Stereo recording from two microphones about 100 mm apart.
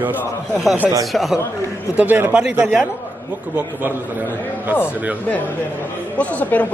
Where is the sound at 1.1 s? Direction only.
Centre (ahead or behind).